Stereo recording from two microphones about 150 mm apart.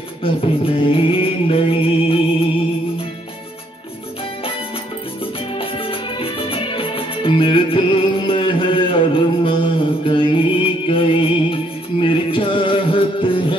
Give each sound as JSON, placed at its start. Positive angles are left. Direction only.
{"t": 0.2, "sound": "music", "side_deg": 35}
{"t": 5.6, "sound": "music", "side_deg": 35}